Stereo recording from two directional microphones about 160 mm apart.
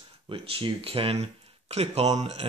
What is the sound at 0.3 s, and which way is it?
Speech, 30° right (ahead or behind).